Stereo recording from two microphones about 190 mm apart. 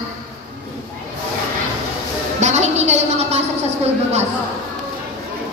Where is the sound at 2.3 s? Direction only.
40° right (ahead or behind).